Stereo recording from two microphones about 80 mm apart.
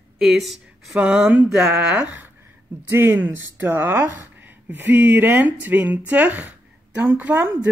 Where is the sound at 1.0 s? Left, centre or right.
Centre.